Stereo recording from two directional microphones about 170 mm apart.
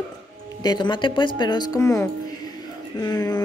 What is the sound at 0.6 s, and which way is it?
Music, 25° left (ahead or behind).